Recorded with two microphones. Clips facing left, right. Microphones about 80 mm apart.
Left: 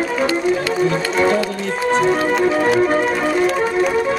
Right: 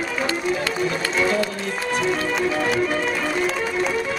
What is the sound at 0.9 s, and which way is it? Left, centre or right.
Music, left.